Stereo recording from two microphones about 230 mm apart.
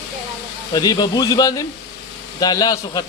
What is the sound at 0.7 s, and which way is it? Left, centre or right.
Speech, centre.